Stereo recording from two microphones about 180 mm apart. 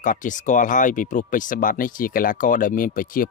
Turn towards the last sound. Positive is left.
turn(degrees=50)  # may be behind; listen again after turning